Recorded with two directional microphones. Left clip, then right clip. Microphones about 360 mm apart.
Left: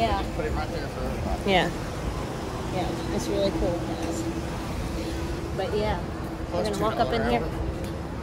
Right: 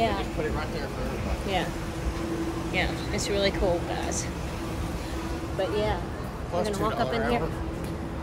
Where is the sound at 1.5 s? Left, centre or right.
Left.